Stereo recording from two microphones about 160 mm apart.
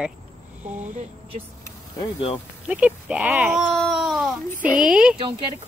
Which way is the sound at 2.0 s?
35° left (ahead or behind).